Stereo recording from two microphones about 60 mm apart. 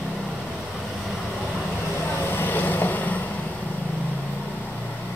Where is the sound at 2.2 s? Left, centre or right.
Left.